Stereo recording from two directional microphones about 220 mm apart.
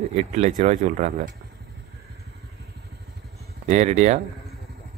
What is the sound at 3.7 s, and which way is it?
Speech, 30° right (ahead or behind).